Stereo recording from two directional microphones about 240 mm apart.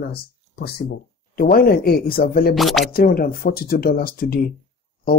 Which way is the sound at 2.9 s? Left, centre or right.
Left.